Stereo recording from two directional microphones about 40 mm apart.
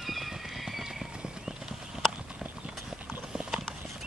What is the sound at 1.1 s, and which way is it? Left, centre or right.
Clip-clop, centre.